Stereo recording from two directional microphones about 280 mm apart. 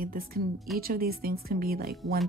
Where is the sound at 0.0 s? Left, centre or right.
Right.